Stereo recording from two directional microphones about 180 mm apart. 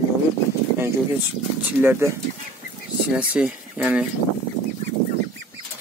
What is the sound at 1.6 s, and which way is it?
Speech, 10° right (ahead or behind).